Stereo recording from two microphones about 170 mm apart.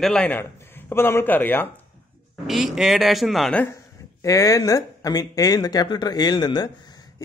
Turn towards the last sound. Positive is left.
turn(degrees=25)  # may be behind; listen again after turning